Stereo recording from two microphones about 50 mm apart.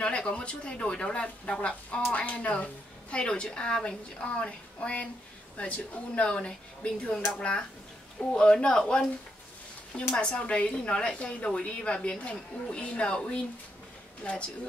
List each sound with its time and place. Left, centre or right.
0.0 s a woman's voice: centre